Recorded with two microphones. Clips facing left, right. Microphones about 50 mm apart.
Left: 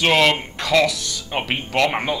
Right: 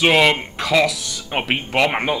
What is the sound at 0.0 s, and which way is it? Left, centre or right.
Speech, centre.